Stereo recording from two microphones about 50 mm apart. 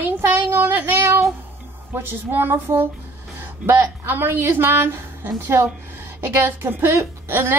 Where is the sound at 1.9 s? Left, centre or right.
Right.